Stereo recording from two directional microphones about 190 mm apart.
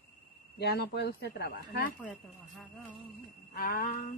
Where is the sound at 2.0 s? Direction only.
Centre (ahead or behind).